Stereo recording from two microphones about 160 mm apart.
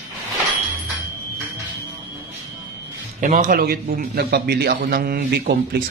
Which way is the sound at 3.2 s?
55° right (ahead or behind).